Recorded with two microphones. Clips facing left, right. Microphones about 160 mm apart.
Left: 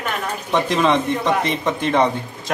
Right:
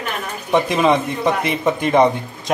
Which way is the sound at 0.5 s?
10° right (ahead or behind).